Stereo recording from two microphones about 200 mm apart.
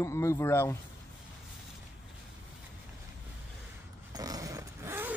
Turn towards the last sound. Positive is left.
turn(degrees=-10)  # may be behind; listen again after turning